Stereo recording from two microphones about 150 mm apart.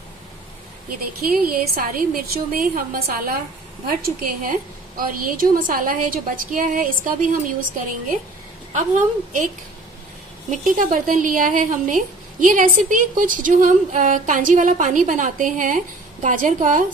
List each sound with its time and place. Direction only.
0.8 s a woman's voice: 70° right (ahead or behind)
10.5 s speech: 60° right (ahead or behind)